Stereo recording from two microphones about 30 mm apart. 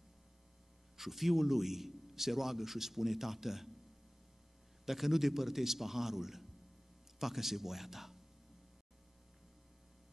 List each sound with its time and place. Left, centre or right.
0.9 s a man's voice: centre
4.8 s a man's voice: centre